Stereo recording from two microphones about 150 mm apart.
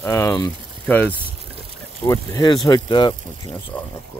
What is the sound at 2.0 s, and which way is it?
Speech, 25° left (ahead or behind).